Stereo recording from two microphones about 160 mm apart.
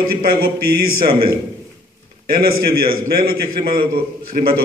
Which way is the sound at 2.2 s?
65° right (ahead or behind).